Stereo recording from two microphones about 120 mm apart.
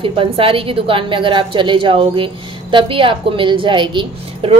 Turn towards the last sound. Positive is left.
turn(degrees=-45)  # may be behind; listen again after turning